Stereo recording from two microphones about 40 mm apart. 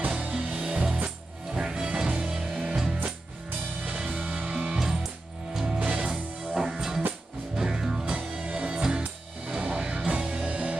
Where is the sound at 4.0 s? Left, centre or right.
Right.